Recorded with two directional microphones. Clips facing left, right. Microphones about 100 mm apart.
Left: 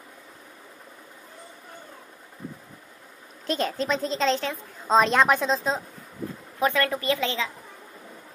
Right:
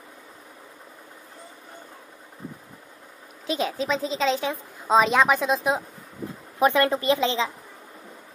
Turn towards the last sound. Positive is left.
turn(degrees=-20)  # may be behind; listen again after turning